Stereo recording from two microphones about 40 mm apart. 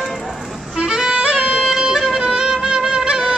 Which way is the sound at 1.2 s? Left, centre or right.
Right.